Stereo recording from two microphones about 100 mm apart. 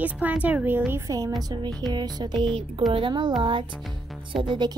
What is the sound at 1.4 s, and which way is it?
Music, 40° right (ahead or behind).